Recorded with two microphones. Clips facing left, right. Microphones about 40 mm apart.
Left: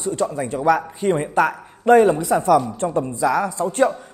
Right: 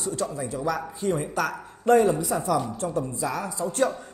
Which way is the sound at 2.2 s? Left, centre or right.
Left.